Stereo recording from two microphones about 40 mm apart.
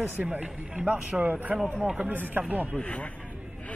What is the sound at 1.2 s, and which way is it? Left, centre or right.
A man's voice, right.